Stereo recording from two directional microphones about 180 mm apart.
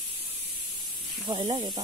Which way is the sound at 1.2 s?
20° right (ahead or behind).